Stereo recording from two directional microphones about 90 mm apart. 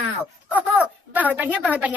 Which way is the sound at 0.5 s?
15° right (ahead or behind).